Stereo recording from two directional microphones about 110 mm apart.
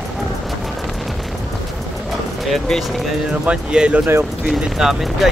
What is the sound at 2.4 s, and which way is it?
Speech, centre (ahead or behind).